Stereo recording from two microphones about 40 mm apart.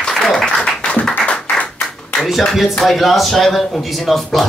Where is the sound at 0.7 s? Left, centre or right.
Left.